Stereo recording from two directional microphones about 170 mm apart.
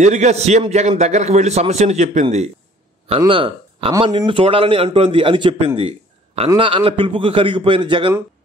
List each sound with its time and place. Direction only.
0.0 s a man's voice: 45° right (ahead or behind)